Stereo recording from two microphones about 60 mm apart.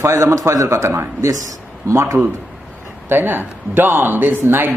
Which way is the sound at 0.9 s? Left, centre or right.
Right.